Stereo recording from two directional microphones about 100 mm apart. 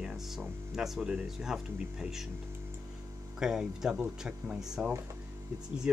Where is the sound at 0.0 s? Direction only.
5° right (ahead or behind).